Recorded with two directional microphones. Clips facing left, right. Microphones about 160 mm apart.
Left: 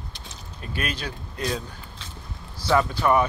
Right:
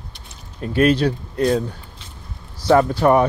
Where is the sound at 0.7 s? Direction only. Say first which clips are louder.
Right 15 dB; 30° right (ahead or behind).